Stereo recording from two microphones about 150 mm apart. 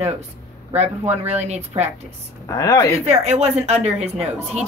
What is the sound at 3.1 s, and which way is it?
Speech, 45° right (ahead or behind).